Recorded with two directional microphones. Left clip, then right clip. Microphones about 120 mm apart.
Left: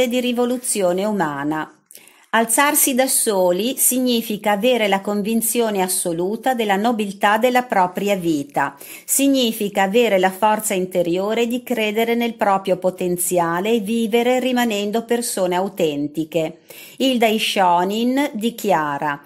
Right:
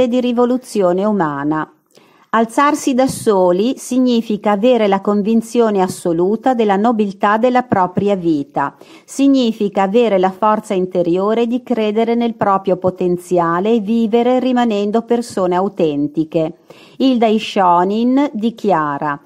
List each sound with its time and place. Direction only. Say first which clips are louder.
0.0 s a woman's voice: right 5 dB; 40° right (ahead or behind)
1.2 s a woman's voice: right 4 dB; 25° right (ahead or behind); by 6.5 s 50° right (ahead or behind)
6.5 s a woman's voice: right 2 dB; 40° right (ahead or behind)
7.2 s a woman's voice: right 1 dB; 30° right (ahead or behind)